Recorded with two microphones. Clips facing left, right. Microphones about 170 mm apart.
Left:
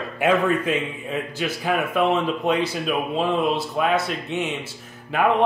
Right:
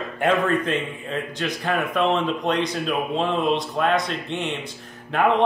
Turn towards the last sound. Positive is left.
turn(degrees=5)  # may be behind; listen again after turning